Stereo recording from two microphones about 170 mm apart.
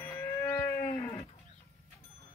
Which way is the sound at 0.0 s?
15° left (ahead or behind).